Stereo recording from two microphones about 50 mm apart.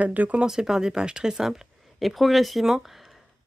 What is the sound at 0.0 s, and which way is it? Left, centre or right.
Speech, right.